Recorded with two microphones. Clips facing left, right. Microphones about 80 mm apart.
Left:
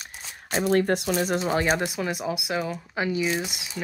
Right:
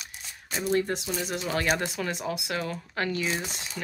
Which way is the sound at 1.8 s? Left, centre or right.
Centre.